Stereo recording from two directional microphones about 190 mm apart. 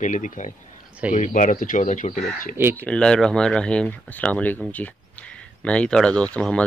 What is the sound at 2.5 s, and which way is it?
Speech, 10° right (ahead or behind).